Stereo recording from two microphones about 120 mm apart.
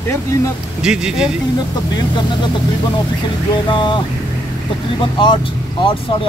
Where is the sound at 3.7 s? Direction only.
40° left (ahead or behind).